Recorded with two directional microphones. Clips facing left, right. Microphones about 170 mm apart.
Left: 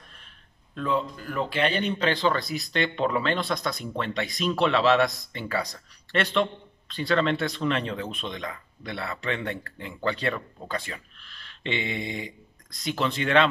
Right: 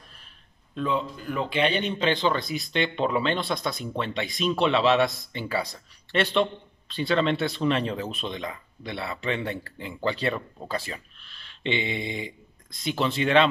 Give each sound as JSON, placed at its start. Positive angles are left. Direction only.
{"t": 0.9, "sound": "speech", "side_deg": -20}